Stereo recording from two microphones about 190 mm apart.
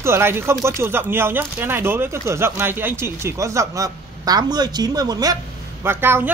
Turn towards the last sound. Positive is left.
turn(degrees=-10)  # may be behind; listen again after turning